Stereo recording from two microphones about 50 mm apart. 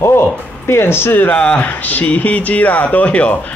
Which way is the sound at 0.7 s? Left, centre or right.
Left.